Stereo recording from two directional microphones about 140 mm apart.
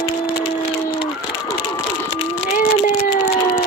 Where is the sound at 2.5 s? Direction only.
70° left (ahead or behind).